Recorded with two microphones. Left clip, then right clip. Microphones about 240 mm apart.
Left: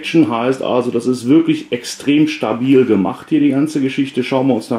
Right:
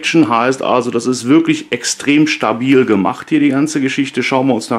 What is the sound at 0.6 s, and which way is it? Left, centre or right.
Speech, right.